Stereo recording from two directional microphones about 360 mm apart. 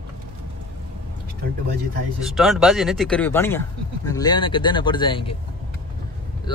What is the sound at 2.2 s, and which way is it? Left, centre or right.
Speech, centre.